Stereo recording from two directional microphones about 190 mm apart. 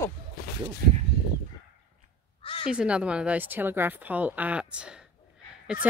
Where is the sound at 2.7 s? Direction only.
5° right (ahead or behind).